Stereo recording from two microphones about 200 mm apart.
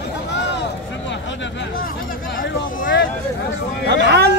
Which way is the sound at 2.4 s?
70° left (ahead or behind).